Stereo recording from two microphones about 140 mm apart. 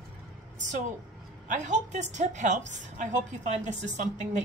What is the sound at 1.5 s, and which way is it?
A woman's voice, 60° right (ahead or behind).